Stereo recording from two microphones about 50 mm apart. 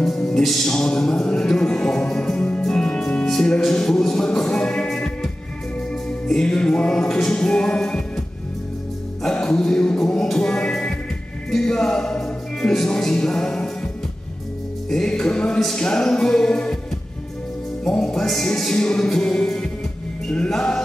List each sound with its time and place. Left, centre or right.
0.0 s music: centre
6.4 s music: centre
9.2 s music: centre
11.5 s speech: centre
14.9 s music: centre
17.8 s music: centre